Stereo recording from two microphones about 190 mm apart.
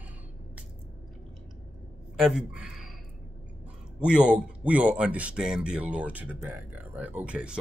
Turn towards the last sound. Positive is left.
turn(degrees=-5)  # may be behind; listen again after turning